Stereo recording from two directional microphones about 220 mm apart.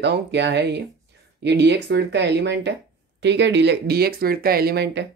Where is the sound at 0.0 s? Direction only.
50° right (ahead or behind).